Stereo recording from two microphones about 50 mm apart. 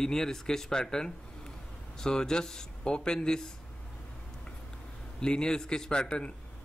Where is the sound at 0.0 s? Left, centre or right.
Centre.